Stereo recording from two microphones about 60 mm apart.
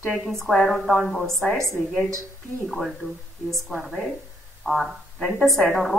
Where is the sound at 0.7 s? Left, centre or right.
Centre.